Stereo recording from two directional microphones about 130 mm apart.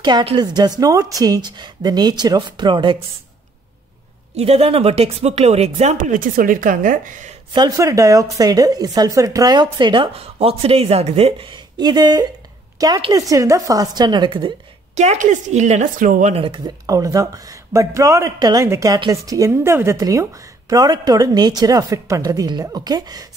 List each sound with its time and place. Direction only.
0.0 s speech: 35° right (ahead or behind)
4.4 s speech: 50° right (ahead or behind); by 7.3 s 85° right
7.5 s speech: 30° right (ahead or behind); by 11.4 s 50° right (ahead or behind)
11.5 s a woman's voice: 35° right (ahead or behind)
15.0 s a woman's voice: 65° right (ahead or behind); by 16.3 s 85° right
16.3 s speech: 45° right (ahead or behind)
16.6 s a woman's voice: 25° right (ahead or behind)